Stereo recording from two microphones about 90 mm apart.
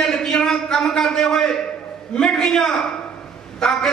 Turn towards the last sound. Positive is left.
turn(degrees=5)  # may be behind; listen again after turning